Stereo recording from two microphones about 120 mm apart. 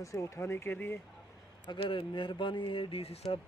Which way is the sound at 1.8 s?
45° left (ahead or behind).